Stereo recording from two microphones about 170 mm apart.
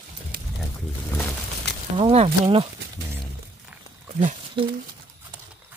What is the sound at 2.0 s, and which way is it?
Speech, 35° right (ahead or behind).